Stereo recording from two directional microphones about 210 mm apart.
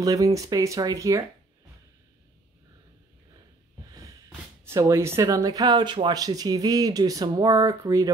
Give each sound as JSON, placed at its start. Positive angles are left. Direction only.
{"t": 0.0, "sound": "speech", "side_deg": -15}
{"t": 4.6, "sound": "speech", "side_deg": -15}